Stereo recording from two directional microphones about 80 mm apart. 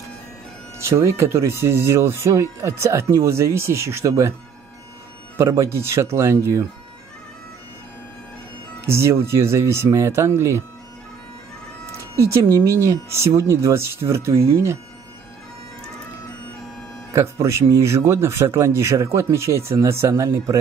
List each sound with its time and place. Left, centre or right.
0.8 s speech: right
5.4 s speech: right
8.8 s speech: right
12.2 s speech: right
17.1 s speech: right